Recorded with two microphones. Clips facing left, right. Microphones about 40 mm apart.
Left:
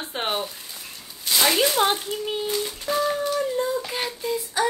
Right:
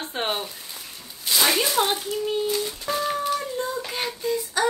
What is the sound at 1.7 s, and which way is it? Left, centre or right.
Speech, left.